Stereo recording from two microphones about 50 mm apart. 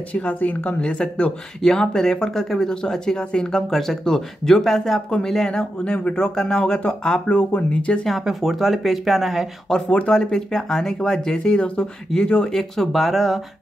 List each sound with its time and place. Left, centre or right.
0.1 s speech: left
1.6 s speech: centre
8.2 s speech: centre
9.7 s speech: centre
10.1 s speech: centre
12.5 s speech: centre